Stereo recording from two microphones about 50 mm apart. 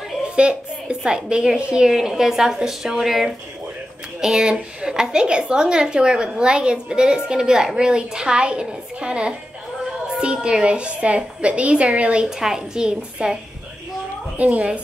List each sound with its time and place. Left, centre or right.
0.4 s a woman's voice: centre
12.3 s a woman's voice: centre
14.3 s a woman's voice: right